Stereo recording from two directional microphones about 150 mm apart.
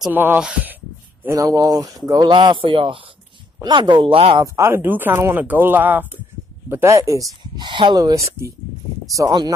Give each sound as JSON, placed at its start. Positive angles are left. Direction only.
{"t": 0.1, "sound": "speech", "side_deg": -15}
{"t": 4.6, "sound": "speech", "side_deg": -15}